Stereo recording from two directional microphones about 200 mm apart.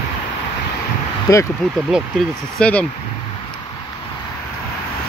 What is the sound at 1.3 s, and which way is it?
Speech, 15° left (ahead or behind).